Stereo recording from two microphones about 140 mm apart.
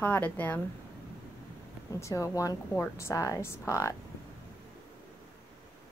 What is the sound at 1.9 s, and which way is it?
Speech, 25° left (ahead or behind).